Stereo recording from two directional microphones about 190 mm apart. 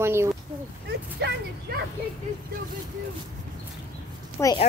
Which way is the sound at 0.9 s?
65° right (ahead or behind).